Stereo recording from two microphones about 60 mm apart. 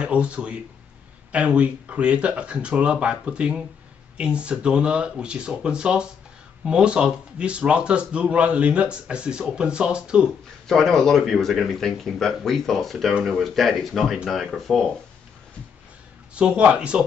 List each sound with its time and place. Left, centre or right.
0.0 s speech: centre
10.7 s speech: centre
16.3 s speech: centre